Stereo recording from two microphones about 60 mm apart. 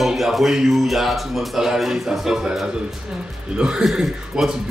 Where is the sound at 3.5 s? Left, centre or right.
Centre.